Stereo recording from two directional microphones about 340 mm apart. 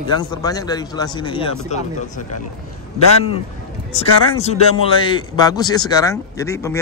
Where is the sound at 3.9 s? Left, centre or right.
Centre.